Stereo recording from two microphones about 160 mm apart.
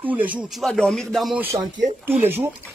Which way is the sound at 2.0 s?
10° right (ahead or behind).